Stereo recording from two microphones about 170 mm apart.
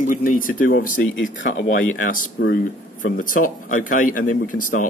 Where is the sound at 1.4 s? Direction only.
90° left.